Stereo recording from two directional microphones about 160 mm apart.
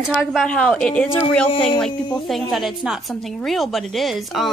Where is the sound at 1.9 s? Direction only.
30° left (ahead or behind).